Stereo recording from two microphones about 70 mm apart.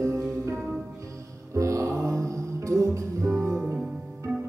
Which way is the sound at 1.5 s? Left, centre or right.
Right.